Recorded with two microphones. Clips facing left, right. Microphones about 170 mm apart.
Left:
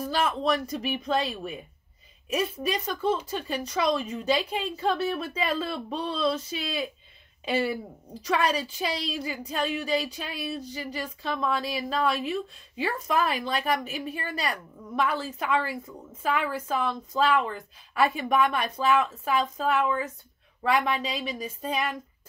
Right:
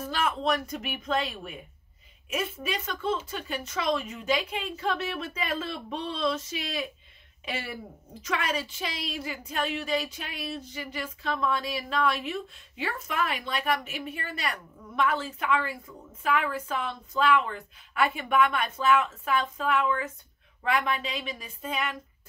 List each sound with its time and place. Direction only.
0.0 s speech: 35° left (ahead or behind)